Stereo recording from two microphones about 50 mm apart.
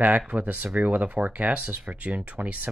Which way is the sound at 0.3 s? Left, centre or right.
Right.